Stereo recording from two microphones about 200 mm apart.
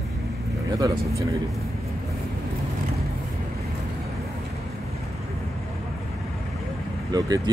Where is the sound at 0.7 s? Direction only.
15° right (ahead or behind).